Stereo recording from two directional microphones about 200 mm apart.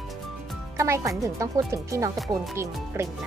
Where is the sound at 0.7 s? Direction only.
15° right (ahead or behind).